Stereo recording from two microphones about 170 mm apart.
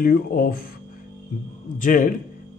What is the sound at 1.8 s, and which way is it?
Speech, 50° left (ahead or behind).